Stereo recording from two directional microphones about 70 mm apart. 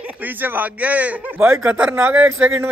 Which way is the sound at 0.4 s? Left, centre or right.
Right.